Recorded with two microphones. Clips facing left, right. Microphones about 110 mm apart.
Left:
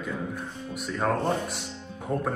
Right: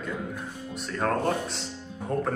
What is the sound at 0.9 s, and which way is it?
A man's voice, centre (ahead or behind).